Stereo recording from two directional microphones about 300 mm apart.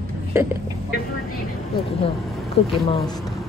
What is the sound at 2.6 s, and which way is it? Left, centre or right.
Speech, centre.